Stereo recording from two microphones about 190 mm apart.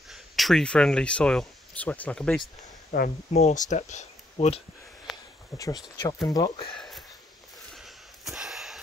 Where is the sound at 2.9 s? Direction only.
40° left (ahead or behind).